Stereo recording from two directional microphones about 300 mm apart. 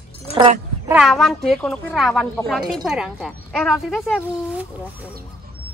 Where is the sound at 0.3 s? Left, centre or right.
Centre.